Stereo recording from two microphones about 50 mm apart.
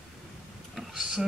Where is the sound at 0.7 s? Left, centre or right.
Centre.